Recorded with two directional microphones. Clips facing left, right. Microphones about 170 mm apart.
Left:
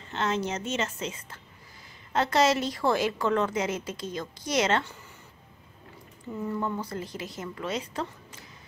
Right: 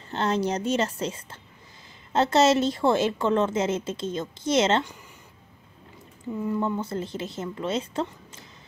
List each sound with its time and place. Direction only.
0.1 s a woman's voice: 35° right (ahead or behind)
6.6 s a woman's voice: 25° right (ahead or behind)